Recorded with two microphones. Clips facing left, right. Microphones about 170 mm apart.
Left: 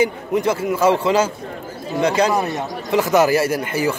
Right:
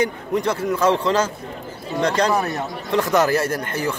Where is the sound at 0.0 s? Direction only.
5° left (ahead or behind).